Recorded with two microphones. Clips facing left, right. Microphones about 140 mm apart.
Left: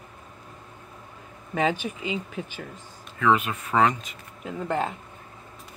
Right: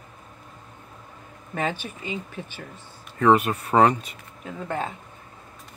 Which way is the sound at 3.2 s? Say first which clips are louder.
Right 4 dB; 40° right (ahead or behind).